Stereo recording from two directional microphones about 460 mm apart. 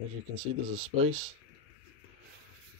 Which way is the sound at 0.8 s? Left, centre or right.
Centre.